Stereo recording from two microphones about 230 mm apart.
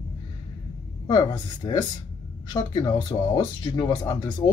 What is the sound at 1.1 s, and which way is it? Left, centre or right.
Speech, centre.